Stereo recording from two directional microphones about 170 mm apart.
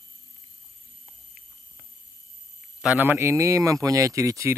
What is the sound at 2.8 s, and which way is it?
Speech, 10° right (ahead or behind).